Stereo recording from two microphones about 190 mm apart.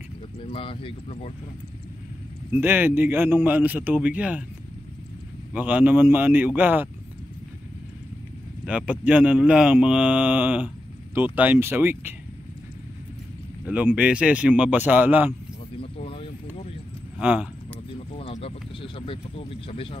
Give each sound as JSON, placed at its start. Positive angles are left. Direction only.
{"t": 0.4, "sound": "speech", "side_deg": 30}
{"t": 2.6, "sound": "speech", "side_deg": -10}
{"t": 5.5, "sound": "speech", "side_deg": -10}
{"t": 8.6, "sound": "speech", "side_deg": -5}
{"t": 13.7, "sound": "speech", "side_deg": -5}
{"t": 15.8, "sound": "a sound", "side_deg": 30}
{"t": 17.2, "sound": "speech", "side_deg": -5}
{"t": 17.9, "sound": "a sound", "side_deg": 30}